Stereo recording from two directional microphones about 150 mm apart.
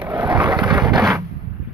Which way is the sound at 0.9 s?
Centre (ahead or behind).